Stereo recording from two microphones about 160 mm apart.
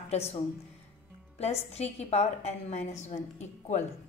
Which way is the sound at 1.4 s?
40° left (ahead or behind).